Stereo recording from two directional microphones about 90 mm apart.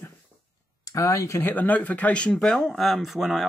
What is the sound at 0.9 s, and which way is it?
Speech, 35° left (ahead or behind).